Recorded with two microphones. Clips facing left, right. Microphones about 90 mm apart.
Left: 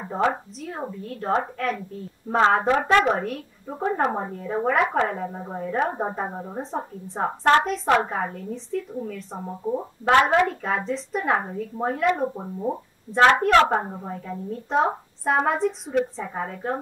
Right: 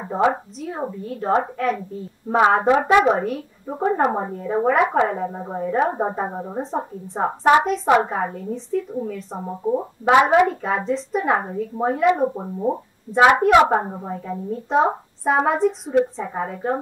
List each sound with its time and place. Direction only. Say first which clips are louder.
0.0 s a woman's voice: right 4 dB; 10° right (ahead or behind)
9.4 s a woman's voice: right 5 dB; 15° right (ahead or behind)